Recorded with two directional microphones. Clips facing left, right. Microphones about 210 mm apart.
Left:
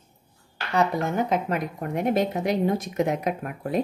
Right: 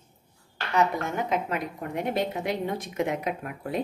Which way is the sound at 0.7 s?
35° left (ahead or behind).